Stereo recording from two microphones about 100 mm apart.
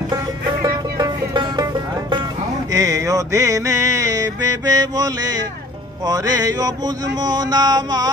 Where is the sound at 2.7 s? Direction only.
35° right (ahead or behind).